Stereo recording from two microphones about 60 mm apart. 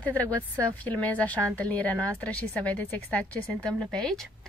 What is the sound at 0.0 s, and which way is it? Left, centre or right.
A woman's voice, left.